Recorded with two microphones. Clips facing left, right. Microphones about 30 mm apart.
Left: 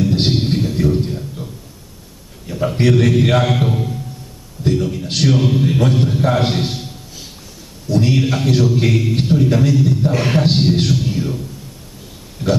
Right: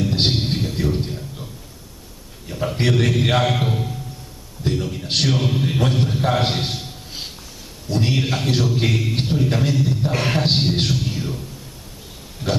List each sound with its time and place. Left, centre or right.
0.3 s music: centre
2.4 s a sound: centre
3.0 s a man's voice: centre
7.9 s a man's voice: right
8.6 s a man's voice: centre
9.5 s a man's voice: centre
9.8 s a man's voice: centre